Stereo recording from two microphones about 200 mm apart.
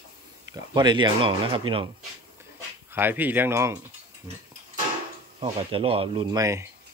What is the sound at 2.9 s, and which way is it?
Speech, 10° right (ahead or behind).